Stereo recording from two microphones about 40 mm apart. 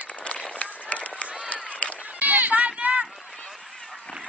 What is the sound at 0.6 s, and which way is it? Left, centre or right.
Run, left.